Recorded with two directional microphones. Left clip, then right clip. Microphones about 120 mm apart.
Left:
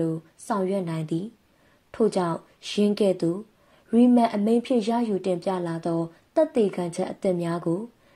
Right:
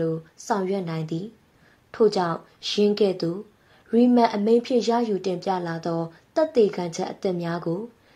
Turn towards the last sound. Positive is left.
turn(degrees=45)  # may be behind; listen again after turning